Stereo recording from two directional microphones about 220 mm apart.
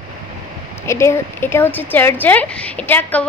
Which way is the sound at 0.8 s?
10° left (ahead or behind).